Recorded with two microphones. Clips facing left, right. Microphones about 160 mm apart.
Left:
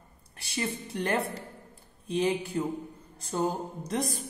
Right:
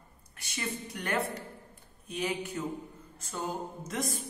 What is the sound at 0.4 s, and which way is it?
A woman's voice, 30° left (ahead or behind).